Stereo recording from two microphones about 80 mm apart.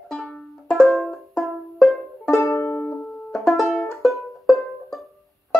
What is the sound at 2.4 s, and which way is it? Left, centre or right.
Music, left.